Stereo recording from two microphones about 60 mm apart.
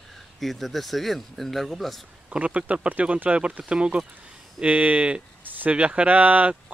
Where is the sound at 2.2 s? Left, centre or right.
Right.